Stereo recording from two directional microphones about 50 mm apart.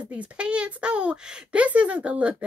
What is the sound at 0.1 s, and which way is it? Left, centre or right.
Speech, right.